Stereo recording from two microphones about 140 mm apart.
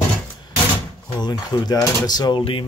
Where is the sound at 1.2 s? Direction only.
30° left (ahead or behind).